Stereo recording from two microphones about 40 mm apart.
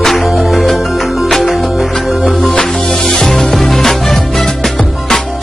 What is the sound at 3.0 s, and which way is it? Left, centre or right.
Music, centre.